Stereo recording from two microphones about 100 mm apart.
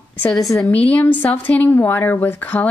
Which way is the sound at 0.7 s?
15° left (ahead or behind).